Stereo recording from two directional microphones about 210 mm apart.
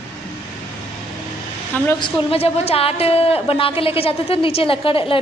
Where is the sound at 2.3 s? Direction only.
30° left (ahead or behind).